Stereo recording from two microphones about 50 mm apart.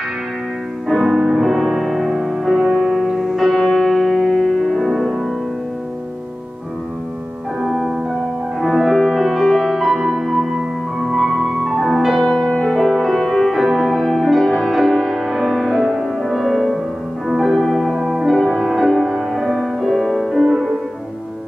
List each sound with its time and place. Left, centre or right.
0.8 s music: centre
4.8 s music: centre
7.6 s music: centre
12.3 s music: centre
12.7 s music: centre